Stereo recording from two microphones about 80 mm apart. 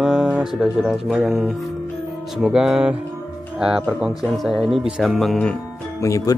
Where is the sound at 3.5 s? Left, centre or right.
Centre.